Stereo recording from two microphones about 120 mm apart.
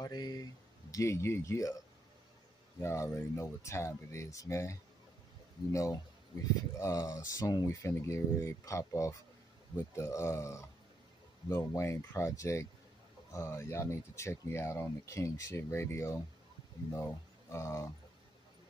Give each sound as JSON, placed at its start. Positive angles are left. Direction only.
{"t": 0.0, "sound": "a sound", "side_deg": 35}
{"t": 0.9, "sound": "speech", "side_deg": 25}
{"t": 2.8, "sound": "speech", "side_deg": 25}